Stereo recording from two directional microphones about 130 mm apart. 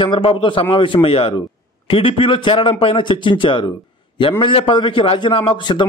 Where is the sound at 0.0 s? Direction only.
45° left (ahead or behind).